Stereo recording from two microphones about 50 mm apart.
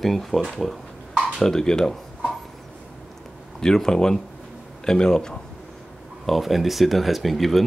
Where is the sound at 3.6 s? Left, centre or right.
Centre.